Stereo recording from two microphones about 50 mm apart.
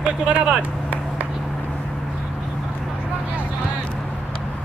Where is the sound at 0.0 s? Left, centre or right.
Right.